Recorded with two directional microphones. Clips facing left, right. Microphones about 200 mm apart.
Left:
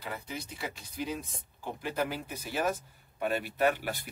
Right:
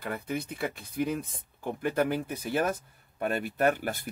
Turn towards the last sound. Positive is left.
turn(degrees=-50)  # may be behind; listen again after turning